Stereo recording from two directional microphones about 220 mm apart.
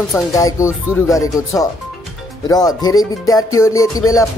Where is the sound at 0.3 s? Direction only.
15° left (ahead or behind).